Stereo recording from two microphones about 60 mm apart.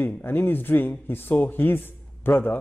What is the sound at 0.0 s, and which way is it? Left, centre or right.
A man's voice, left.